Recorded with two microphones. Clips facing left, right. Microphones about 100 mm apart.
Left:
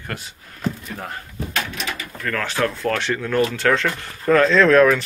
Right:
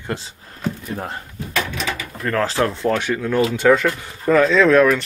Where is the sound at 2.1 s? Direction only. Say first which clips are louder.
Right 5 dB; 30° right (ahead or behind).